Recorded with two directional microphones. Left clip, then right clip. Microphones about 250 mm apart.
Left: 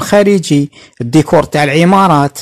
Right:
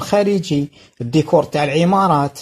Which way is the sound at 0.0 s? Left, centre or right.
Left.